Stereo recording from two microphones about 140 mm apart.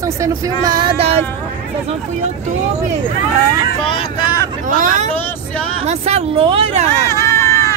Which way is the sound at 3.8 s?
40° left (ahead or behind).